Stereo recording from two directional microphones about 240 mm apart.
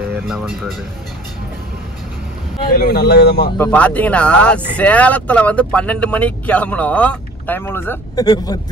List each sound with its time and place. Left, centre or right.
0.3 s speech: centre
2.8 s speech: left
3.5 s speech: centre